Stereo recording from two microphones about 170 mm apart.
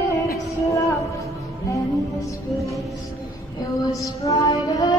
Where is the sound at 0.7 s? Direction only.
20° left (ahead or behind).